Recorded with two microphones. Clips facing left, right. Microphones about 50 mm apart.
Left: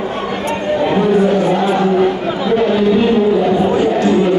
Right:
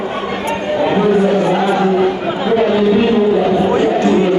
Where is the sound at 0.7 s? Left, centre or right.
Centre.